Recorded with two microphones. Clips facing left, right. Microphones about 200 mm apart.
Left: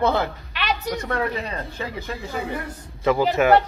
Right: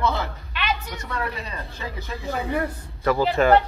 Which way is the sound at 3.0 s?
20° left (ahead or behind).